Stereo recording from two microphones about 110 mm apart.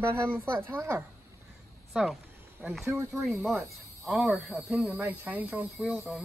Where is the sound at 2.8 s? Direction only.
25° right (ahead or behind).